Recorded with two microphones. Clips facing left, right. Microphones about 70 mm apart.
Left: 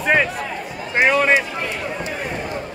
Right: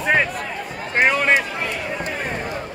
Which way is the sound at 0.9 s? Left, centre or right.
Right.